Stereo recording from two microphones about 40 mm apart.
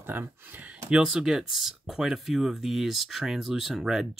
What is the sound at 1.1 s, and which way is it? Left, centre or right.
Speech, centre.